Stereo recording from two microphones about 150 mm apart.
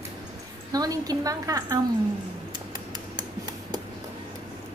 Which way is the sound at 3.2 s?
25° right (ahead or behind).